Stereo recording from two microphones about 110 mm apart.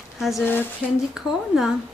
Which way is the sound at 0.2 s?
Centre (ahead or behind).